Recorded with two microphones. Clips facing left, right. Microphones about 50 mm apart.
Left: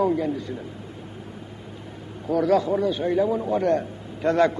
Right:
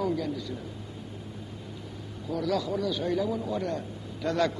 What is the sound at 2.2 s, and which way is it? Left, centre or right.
A man's voice, left.